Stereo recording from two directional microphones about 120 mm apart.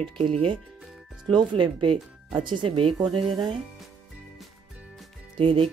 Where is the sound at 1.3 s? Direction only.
40° right (ahead or behind).